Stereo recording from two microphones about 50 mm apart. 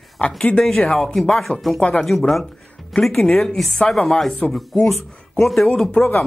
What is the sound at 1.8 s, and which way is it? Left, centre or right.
Speech, left.